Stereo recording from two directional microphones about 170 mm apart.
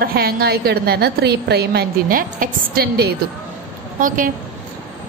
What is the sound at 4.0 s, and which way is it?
Speech, 50° right (ahead or behind).